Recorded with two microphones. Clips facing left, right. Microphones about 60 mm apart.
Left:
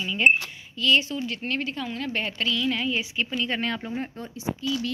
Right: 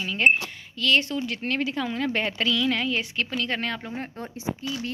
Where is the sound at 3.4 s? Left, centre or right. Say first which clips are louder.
Left 1 dB; right.